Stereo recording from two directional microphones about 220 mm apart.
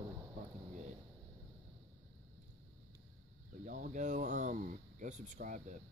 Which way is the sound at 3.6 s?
35° right (ahead or behind).